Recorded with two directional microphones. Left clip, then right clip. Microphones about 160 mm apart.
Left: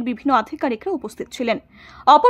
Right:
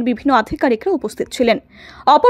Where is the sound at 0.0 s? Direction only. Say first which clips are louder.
Right 4 dB; 20° right (ahead or behind).